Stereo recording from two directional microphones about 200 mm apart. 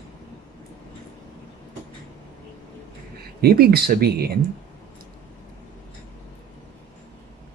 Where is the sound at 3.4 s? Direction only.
50° right (ahead or behind).